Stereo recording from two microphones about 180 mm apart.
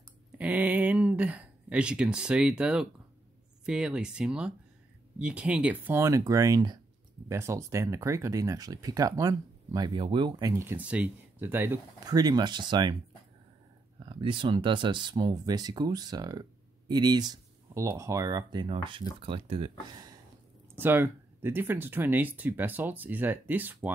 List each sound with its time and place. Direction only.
0.4 s speech: 10° right (ahead or behind); by 10.5 s 25° right (ahead or behind)
10.5 s speech: 15° right (ahead or behind)
13.9 s speech: 25° right (ahead or behind)
20.7 s speech: 10° right (ahead or behind)